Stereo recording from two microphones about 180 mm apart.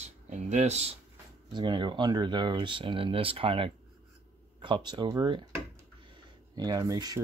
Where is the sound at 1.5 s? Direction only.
25° right (ahead or behind).